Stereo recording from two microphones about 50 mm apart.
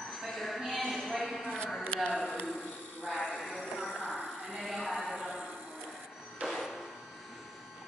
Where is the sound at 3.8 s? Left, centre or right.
Left.